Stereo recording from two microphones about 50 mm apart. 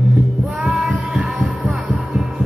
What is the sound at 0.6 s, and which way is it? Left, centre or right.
Music, centre.